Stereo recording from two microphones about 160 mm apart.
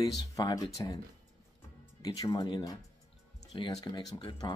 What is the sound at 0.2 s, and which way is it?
Speech, 25° left (ahead or behind).